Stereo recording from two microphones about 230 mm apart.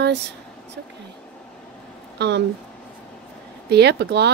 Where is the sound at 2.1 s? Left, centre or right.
Right.